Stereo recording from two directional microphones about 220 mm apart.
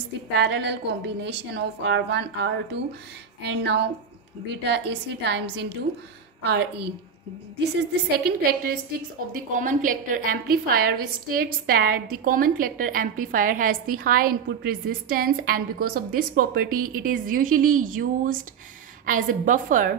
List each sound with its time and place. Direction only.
0.4 s a woman's voice: 55° right (ahead or behind)
7.9 s a woman's voice: 45° right (ahead or behind)